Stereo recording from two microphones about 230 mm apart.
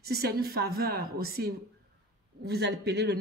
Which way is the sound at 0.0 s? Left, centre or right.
Right.